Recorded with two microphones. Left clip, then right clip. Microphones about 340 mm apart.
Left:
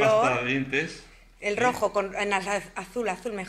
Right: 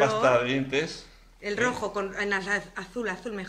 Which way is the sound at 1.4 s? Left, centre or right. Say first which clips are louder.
Left 3 dB; centre.